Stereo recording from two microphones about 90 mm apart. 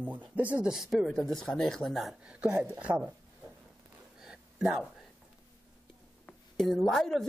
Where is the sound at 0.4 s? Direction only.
15° right (ahead or behind).